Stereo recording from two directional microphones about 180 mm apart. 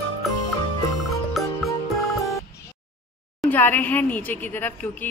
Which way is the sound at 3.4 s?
10° left (ahead or behind).